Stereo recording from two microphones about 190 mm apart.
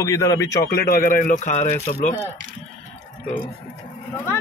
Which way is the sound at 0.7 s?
50° left (ahead or behind).